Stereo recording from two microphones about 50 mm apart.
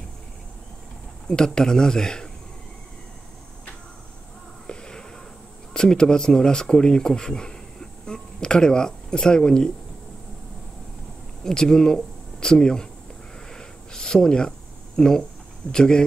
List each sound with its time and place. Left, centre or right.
1.2 s speech: centre
4.6 s a sound: centre
5.7 s speech: centre
11.4 s speech: centre
13.5 s snort: centre
15.0 s speech: centre